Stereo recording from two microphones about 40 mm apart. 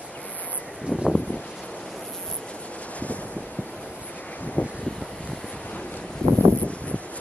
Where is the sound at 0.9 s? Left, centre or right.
Right.